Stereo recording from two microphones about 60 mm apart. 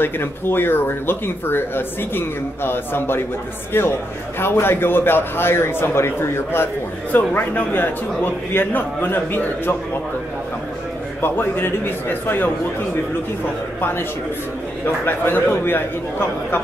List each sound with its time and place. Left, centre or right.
0.0 s speech: left
7.1 s speech: left
11.1 s speech: left
13.7 s speech: left
15.0 s speech: left